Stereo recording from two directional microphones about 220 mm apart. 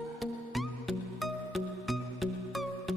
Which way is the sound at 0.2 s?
Centre (ahead or behind).